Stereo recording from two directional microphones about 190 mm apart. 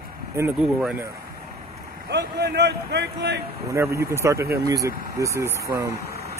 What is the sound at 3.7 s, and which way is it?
Speech, 15° right (ahead or behind).